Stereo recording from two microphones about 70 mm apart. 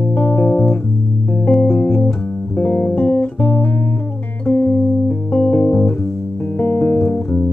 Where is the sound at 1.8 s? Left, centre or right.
Centre.